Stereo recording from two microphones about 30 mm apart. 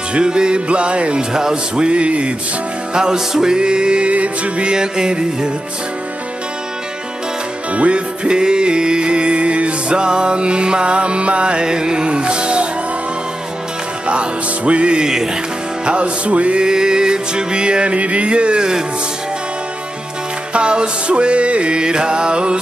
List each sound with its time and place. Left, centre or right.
0.1 s music: right
1.3 s music: right
1.8 s music: right
2.9 s music: right
4.1 s music: right
4.6 s music: right
7.7 s music: right
14.0 s music: right
16.6 s music: right
17.9 s music: right
20.5 s music: right